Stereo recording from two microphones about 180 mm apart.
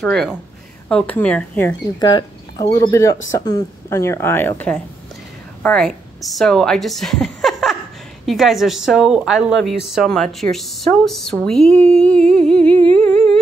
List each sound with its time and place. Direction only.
0.0 s a woman's voice: centre (ahead or behind)
2.0 s a woman's voice: 25° left (ahead or behind); by 13.4 s 5° left (ahead or behind)